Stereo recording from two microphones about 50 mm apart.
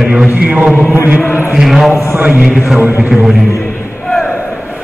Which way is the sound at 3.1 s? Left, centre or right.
Centre.